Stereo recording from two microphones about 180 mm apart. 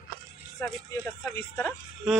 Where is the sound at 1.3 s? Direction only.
15° left (ahead or behind).